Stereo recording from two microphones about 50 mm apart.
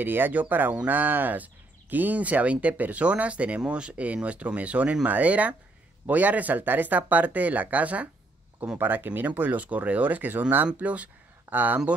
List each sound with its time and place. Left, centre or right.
0.0 s speech: right
8.7 s speech: right